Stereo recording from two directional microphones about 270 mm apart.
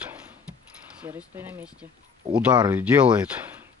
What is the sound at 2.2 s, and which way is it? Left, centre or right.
Speech, centre.